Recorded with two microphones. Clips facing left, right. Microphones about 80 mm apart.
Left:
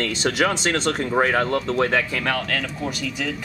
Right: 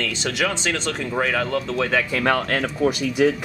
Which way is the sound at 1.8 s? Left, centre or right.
Centre.